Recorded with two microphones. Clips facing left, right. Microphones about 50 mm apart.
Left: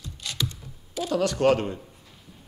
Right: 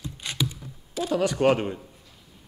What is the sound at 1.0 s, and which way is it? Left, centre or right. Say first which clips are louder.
Speech: even; centre.